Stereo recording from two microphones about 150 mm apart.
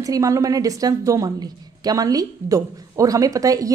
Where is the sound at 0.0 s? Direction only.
20° right (ahead or behind).